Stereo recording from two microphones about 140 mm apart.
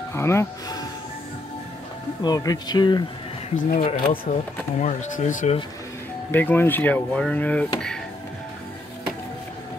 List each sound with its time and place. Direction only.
0.1 s speech: 20° left (ahead or behind)
2.2 s speech: 25° left (ahead or behind)
3.5 s speech: 75° left (ahead or behind)
4.3 s speech: 60° left (ahead or behind)
6.3 s speech: 15° left (ahead or behind)